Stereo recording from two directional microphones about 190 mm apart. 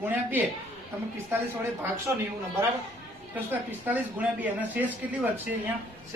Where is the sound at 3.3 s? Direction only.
10° right (ahead or behind).